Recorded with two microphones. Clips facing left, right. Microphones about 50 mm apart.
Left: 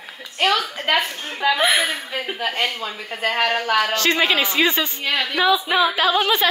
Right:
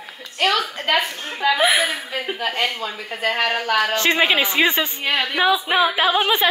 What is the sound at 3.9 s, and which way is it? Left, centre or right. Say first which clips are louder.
A woman's voice: right 1 dB; centre.